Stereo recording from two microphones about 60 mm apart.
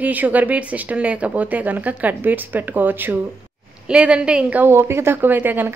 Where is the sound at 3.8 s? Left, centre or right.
Centre.